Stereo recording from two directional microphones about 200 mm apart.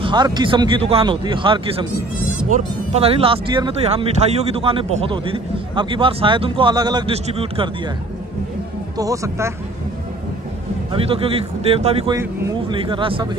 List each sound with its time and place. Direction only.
0.0 s speech: 20° right (ahead or behind)
8.9 s speech: 15° right (ahead or behind)
10.9 s speech: 30° right (ahead or behind)
12.1 s speech: 15° right (ahead or behind)